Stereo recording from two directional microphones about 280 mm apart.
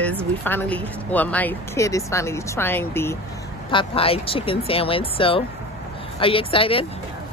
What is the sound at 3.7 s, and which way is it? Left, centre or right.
Speech, centre.